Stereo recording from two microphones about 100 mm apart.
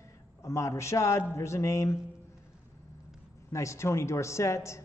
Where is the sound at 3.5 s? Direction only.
30° left (ahead or behind).